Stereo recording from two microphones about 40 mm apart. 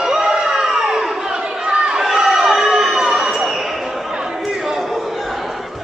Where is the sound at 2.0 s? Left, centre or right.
Centre.